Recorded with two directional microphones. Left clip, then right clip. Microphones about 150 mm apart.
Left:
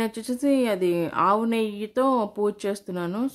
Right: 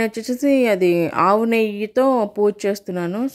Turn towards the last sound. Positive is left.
turn(degrees=-15)  # may be behind; listen again after turning